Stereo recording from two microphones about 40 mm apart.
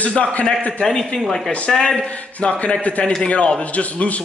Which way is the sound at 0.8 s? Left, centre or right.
Centre.